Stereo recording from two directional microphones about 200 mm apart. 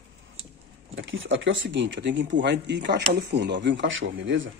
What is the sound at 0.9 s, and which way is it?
Speech, 70° right (ahead or behind).